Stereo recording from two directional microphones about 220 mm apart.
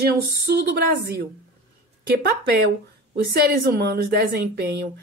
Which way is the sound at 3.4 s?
45° right (ahead or behind).